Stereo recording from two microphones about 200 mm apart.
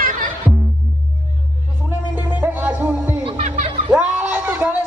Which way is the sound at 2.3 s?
10° right (ahead or behind).